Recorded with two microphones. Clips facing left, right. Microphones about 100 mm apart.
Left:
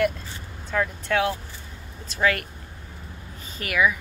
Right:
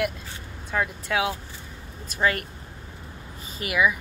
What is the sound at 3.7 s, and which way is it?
Speech, 10° right (ahead or behind).